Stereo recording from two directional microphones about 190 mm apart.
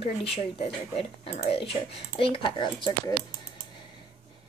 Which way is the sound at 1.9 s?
30° left (ahead or behind).